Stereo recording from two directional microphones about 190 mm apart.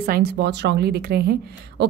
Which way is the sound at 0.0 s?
55° right (ahead or behind).